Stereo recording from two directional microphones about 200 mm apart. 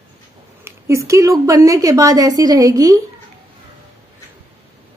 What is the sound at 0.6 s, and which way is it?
A woman's voice, 15° right (ahead or behind).